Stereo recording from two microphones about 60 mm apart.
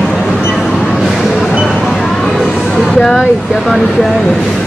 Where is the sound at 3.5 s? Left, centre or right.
Centre.